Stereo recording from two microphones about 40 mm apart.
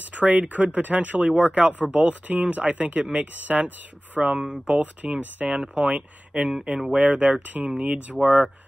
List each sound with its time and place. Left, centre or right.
0.0 s speech: right
1.3 s speech: right
3.3 s speech: right
4.4 s speech: right
8.2 s speech: right